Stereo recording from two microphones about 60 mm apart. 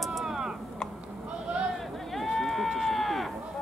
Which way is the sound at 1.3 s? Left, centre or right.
Centre.